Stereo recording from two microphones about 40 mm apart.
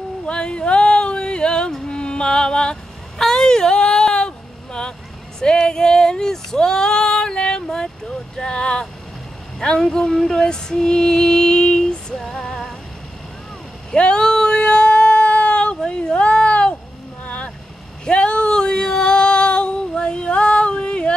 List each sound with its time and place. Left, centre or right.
0.3 s a sound: left
1.9 s music: left
3.2 s a sound: centre
5.4 s speech: centre
9.6 s music: centre
13.9 s speech: left
14.2 s a sound: centre
17.2 s boat: left
18.0 s female singing: left